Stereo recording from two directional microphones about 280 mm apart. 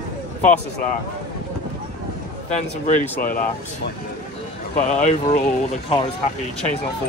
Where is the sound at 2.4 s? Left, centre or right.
Left.